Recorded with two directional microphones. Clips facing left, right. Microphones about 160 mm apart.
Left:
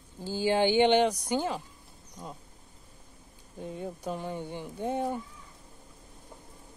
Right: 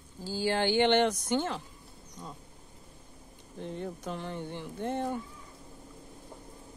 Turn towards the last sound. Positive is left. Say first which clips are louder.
# left 2 dB
turn(degrees=10)  # may be behind; listen again after turning